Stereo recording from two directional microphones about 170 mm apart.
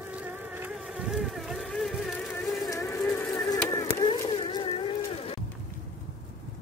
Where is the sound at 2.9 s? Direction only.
15° left (ahead or behind); by 5.3 s 35° left (ahead or behind).